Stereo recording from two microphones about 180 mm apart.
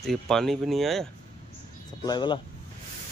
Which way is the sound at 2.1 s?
25° left (ahead or behind).